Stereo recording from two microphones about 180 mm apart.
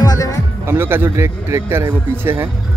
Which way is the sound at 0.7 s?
10° right (ahead or behind).